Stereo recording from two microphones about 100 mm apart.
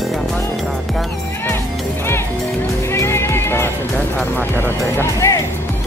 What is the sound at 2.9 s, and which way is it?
Music, 25° left (ahead or behind).